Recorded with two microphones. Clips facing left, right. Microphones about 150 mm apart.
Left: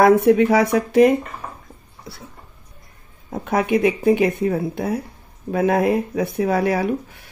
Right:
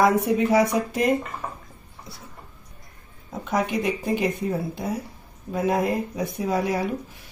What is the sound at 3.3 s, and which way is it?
Speech, 60° left (ahead or behind).